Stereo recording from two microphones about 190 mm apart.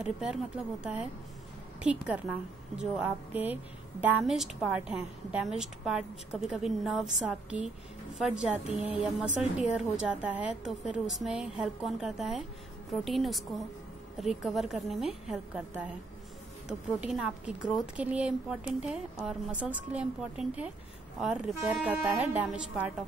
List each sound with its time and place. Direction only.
0.0 s a woman's voice: 5° right (ahead or behind)
1.8 s a woman's voice: 5° right (ahead or behind)